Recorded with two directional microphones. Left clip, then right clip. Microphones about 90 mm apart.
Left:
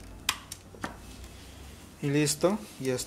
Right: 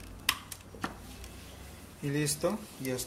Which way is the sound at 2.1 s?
35° left (ahead or behind).